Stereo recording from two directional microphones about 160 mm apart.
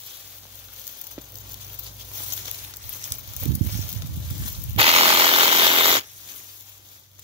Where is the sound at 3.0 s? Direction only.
45° right (ahead or behind).